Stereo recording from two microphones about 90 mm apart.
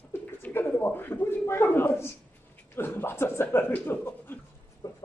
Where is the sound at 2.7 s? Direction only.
25° left (ahead or behind).